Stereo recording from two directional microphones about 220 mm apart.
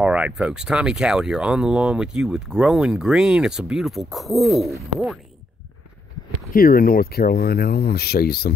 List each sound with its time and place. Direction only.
0.0 s speech: 5° right (ahead or behind)
6.5 s speech: 40° left (ahead or behind)